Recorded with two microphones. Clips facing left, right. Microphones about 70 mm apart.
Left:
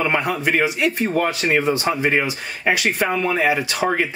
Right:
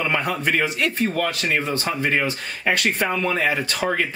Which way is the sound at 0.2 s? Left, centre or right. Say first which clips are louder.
Left 3 dB; centre.